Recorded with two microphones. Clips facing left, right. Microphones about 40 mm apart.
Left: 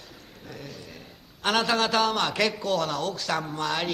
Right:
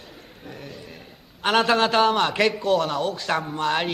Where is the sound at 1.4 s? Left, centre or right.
Centre.